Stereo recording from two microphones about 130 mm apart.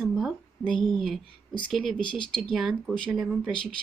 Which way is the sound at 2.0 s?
40° left (ahead or behind).